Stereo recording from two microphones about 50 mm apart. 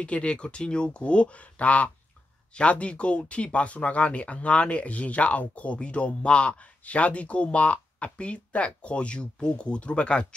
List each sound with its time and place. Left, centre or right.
0.0 s speech: left